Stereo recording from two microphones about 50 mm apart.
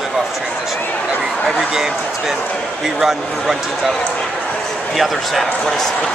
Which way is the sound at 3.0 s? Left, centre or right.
Centre.